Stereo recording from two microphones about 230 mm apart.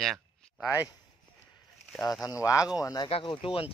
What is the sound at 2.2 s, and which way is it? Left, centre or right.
Speech, centre.